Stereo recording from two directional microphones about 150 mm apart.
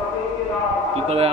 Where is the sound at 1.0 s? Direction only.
40° right (ahead or behind).